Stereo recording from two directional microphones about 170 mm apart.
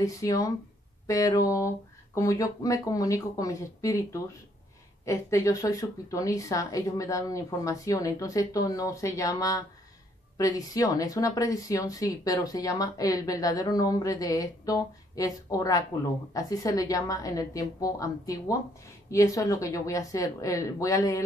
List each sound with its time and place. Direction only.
0.0 s speech: 20° left (ahead or behind)